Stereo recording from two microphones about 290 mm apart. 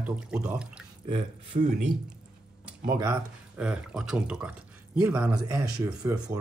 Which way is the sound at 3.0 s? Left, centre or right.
Centre.